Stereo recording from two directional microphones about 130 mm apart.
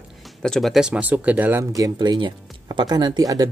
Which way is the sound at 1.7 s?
30° right (ahead or behind).